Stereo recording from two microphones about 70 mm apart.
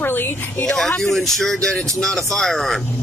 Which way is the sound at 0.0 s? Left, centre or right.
Left.